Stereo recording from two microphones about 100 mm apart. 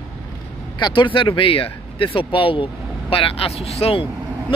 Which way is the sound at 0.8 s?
50° left (ahead or behind).